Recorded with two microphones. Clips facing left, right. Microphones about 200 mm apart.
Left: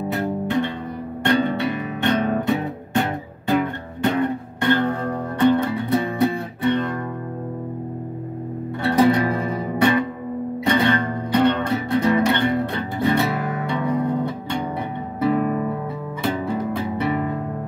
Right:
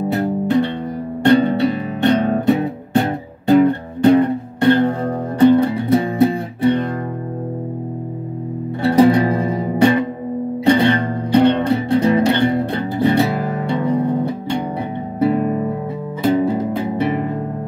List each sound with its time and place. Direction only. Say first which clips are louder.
0.1 s music: right 5 dB; 35° right (ahead or behind)
8.8 s music: right 5 dB; 30° right (ahead or behind)